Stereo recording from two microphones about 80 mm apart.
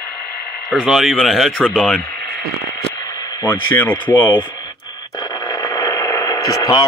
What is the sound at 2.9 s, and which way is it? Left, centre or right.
Radio, left.